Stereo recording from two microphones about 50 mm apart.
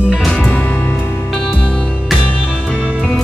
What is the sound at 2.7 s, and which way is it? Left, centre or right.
Music, right.